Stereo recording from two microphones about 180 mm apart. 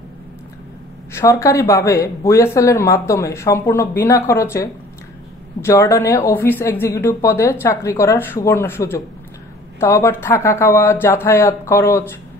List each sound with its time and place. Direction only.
1.1 s speech: 15° left (ahead or behind)